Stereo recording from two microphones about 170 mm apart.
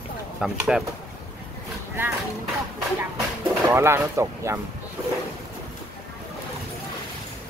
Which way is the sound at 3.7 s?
15° right (ahead or behind).